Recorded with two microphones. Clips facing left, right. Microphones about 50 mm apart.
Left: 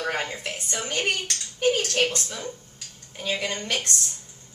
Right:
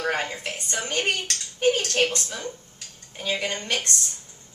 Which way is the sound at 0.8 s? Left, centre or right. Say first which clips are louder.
Even; centre.